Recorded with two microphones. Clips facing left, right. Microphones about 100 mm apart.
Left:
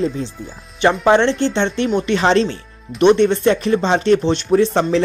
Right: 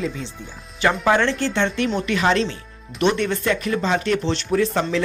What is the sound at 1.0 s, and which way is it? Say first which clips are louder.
Speech: left 6 dB; 25° left (ahead or behind).